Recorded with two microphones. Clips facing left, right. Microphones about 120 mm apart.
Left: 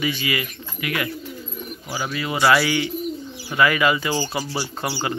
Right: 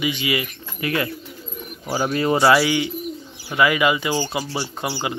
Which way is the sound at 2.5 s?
25° right (ahead or behind).